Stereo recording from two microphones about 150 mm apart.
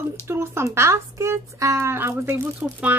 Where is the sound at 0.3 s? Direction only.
15° right (ahead or behind).